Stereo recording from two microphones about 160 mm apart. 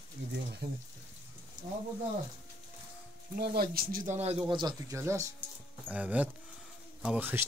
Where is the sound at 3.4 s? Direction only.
70° right (ahead or behind).